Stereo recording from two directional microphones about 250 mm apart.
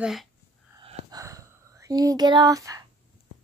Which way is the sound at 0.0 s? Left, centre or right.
Centre.